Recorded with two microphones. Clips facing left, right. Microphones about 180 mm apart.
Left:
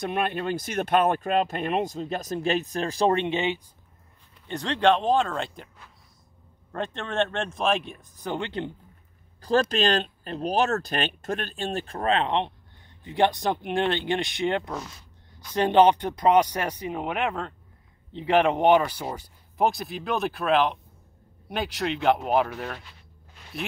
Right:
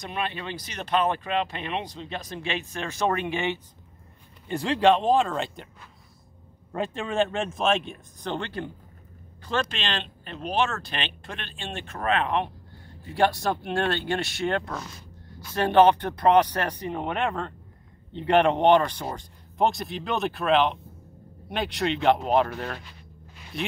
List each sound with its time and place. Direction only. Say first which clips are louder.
0.0 s speech: left 5 dB; 55° left (ahead or behind); by 3.6 s 20° left (ahead or behind)
4.5 s speech: right 1 dB; 5° right (ahead or behind)
6.7 s speech: right 2 dB; 5° right (ahead or behind); by 8.7 s 20° left (ahead or behind)
9.4 s speech: left 7 dB; 35° left (ahead or behind); by 23.7 s centre (ahead or behind)